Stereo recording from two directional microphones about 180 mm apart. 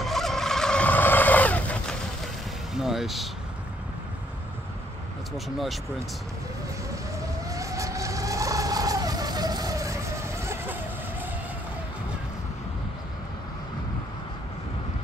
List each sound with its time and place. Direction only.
0.0 s fowl: centre (ahead or behind)
2.7 s vehicle: centre (ahead or behind)
7.4 s vehicle: 20° right (ahead or behind)